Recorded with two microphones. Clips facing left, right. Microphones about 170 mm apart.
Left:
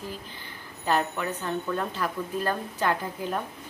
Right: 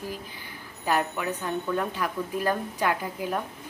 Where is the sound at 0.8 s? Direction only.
10° right (ahead or behind).